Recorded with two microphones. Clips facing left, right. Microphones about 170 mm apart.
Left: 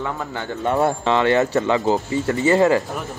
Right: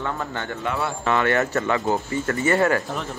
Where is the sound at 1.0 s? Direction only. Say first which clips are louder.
Left 1 dB; 25° left (ahead or behind).